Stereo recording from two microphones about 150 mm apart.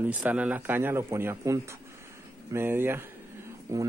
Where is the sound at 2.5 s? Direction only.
15° right (ahead or behind).